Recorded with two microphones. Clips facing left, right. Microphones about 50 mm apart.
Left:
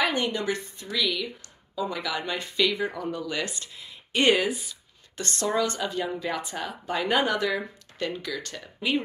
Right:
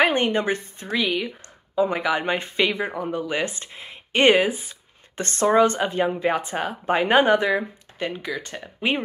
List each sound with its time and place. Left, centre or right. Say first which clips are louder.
0.0 s speech: right 6 dB; right
7.4 s speech: right 5 dB; right